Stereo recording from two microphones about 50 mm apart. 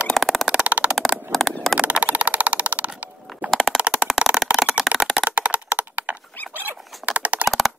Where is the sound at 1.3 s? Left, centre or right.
Centre.